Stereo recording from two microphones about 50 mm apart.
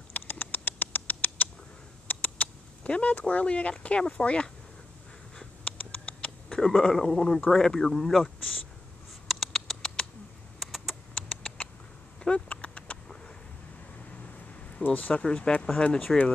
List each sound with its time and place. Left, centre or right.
0.1 s patter: left
2.0 s rodents: left
4.2 s speech: left
5.7 s rodents: left
6.6 s speech: centre
9.3 s rodents: centre
10.9 s rodents: left
12.2 s a sound: left
14.9 s speech: left
15.2 s speech: centre